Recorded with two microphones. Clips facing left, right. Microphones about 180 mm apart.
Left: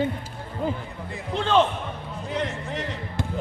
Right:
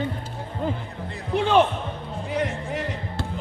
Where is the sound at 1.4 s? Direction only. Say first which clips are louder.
Right 2 dB; 15° right (ahead or behind).